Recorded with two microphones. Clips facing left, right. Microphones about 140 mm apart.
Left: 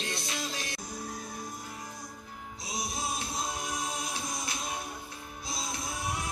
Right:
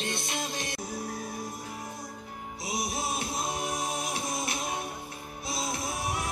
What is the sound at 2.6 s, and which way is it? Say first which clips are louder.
Music: right 4 dB; 25° right (ahead or behind).